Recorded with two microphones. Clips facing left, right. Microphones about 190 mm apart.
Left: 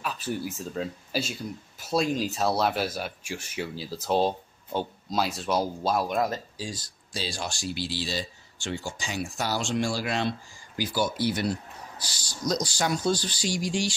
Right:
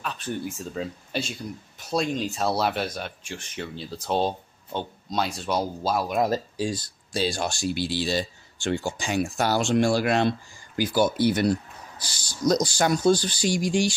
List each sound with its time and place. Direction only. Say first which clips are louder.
0.0 s speech: even; 5° left (ahead or behind)
6.5 s speech: right 9 dB; 60° right (ahead or behind)